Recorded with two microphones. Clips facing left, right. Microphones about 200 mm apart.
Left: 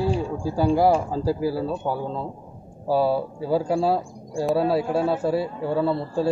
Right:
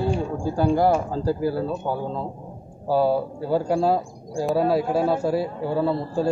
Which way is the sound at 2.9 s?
5° left (ahead or behind).